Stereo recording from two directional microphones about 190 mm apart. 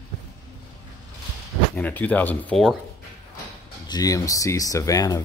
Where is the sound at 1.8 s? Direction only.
10° left (ahead or behind).